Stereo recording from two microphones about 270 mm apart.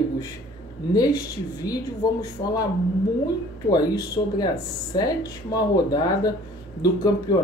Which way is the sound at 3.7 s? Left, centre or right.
Centre.